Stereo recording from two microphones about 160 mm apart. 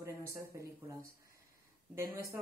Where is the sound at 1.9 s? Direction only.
15° right (ahead or behind).